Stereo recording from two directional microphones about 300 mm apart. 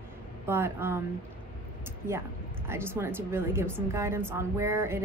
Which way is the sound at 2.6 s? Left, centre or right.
Centre.